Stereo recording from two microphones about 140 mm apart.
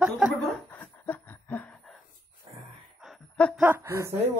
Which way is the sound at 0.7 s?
15° left (ahead or behind).